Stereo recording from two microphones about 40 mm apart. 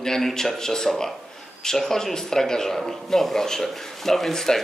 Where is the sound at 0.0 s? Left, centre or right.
Centre.